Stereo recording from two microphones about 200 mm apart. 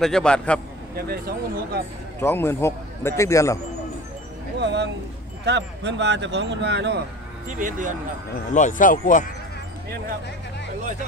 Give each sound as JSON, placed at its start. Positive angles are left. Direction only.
{"t": 0.0, "sound": "a man's voice", "side_deg": 5}
{"t": 0.9, "sound": "speech", "side_deg": -50}
{"t": 2.1, "sound": "a man's voice", "side_deg": 10}
{"t": 4.6, "sound": "speech", "side_deg": -60}
{"t": 7.4, "sound": "speech", "side_deg": -40}
{"t": 8.5, "sound": "speech", "side_deg": 40}